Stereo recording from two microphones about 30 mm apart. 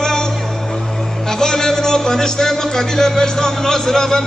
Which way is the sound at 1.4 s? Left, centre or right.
Left.